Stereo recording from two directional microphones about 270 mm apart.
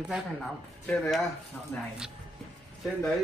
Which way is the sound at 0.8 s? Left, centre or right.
Centre.